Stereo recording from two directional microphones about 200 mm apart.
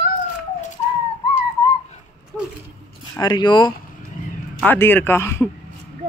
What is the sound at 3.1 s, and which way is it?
Speech, 20° left (ahead or behind).